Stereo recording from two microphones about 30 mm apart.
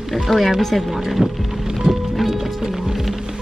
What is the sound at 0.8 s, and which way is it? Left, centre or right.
Speech, centre.